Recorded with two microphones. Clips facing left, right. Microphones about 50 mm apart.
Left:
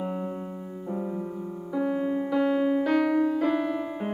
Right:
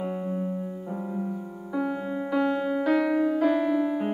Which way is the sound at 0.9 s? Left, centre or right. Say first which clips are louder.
Left 1 dB; centre.